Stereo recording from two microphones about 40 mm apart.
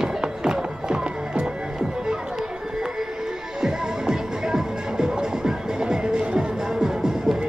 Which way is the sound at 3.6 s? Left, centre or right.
Centre.